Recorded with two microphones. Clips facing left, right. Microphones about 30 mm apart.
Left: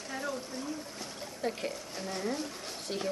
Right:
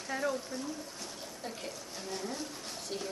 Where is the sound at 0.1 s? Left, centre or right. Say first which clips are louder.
Right 4 dB; centre.